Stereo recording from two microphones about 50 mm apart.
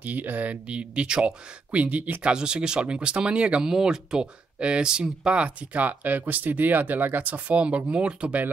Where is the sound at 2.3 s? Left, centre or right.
Centre.